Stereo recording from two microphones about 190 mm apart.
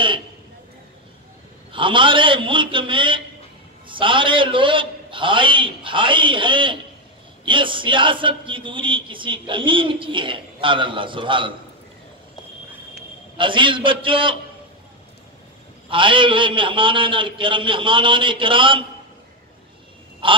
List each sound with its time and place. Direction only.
1.7 s speech: 25° right (ahead or behind)
13.4 s speech: 25° right (ahead or behind)
15.9 s speech: 25° right (ahead or behind)
20.2 s speech: 25° right (ahead or behind)